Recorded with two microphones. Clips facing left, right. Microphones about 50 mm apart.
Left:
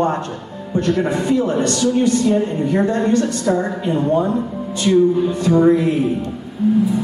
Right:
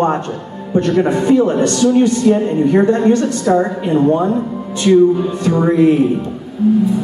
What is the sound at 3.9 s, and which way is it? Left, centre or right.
Speech, centre.